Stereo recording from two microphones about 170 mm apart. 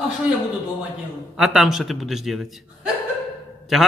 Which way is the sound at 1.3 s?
5° right (ahead or behind).